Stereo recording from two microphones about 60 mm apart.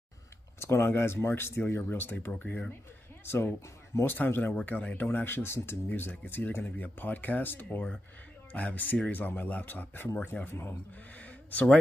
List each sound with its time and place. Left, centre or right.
0.6 s speech: left
3.3 s speech: left
10.5 s speech: left
11.1 s a sound: left